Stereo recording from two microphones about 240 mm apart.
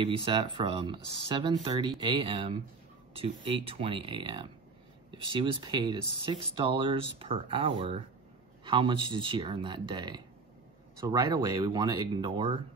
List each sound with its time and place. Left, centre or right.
0.0 s speech: right